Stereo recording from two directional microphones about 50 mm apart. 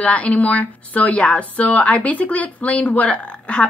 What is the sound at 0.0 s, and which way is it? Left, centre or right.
Speech, left.